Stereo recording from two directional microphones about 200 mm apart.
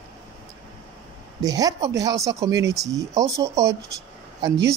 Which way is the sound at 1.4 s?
20° right (ahead or behind).